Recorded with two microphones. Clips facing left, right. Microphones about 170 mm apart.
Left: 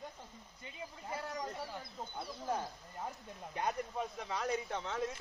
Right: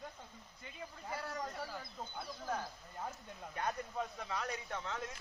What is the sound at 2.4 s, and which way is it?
Speech, 20° left (ahead or behind).